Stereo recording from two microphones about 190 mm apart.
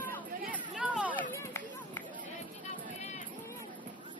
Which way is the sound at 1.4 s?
15° left (ahead or behind).